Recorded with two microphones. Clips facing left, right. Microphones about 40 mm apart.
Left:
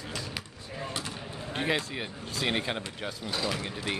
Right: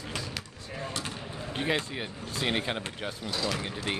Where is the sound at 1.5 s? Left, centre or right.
Centre.